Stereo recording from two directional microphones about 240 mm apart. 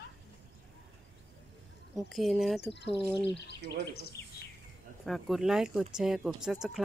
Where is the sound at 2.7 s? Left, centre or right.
Left.